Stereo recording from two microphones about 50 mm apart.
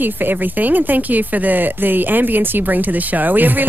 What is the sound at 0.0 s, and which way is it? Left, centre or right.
Speech, right.